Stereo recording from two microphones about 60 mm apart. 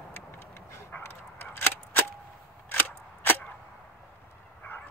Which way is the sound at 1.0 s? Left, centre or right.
Left.